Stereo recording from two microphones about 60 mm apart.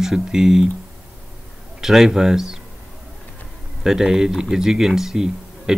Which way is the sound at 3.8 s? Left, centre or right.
Centre.